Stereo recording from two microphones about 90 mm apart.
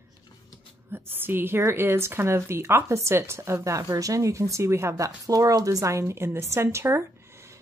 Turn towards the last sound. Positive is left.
turn(degrees=-30)  # may be behind; listen again after turning